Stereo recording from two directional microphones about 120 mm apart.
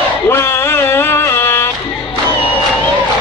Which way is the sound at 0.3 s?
20° left (ahead or behind).